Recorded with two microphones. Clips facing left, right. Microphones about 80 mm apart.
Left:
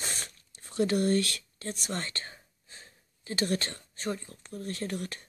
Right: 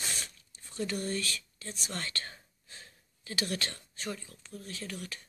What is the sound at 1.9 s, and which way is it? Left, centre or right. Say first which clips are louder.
Speech: even; left.